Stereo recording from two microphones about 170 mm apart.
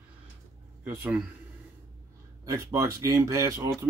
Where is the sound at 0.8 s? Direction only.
10° right (ahead or behind).